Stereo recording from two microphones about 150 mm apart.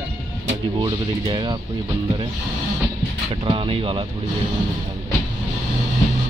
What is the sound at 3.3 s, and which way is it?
Speech, 35° right (ahead or behind).